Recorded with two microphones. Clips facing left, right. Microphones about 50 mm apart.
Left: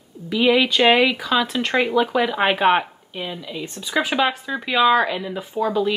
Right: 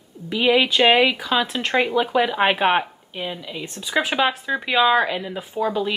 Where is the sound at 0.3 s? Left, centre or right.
Centre.